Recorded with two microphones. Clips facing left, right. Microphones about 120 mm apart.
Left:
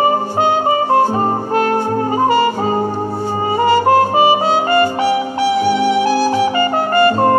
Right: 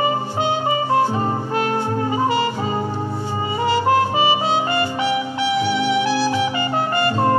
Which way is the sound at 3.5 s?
45° left (ahead or behind).